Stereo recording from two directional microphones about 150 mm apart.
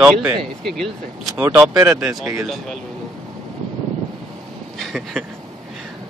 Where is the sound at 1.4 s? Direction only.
20° right (ahead or behind).